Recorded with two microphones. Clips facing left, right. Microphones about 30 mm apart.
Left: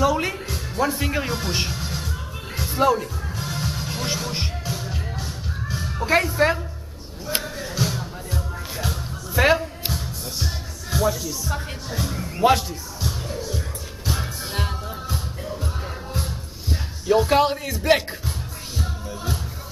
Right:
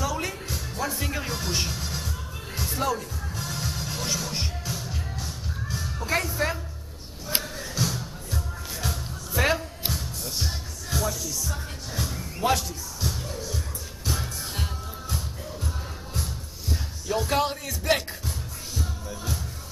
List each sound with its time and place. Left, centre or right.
0.0 s music: left
7.4 s music: centre
12.0 s speech: centre
13.0 s music: centre
17.1 s speech: left